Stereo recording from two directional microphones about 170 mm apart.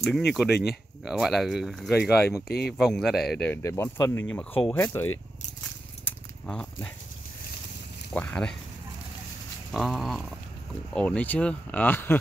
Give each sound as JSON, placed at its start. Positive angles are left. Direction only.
{"t": 0.3, "sound": "speech", "side_deg": 0}
{"t": 2.4, "sound": "speech", "side_deg": 70}
{"t": 2.8, "sound": "speech", "side_deg": 0}
{"t": 3.6, "sound": "speech", "side_deg": 15}
{"t": 6.0, "sound": "a sound", "side_deg": 5}
{"t": 8.1, "sound": "speech", "side_deg": 5}
{"t": 9.7, "sound": "speech", "side_deg": 0}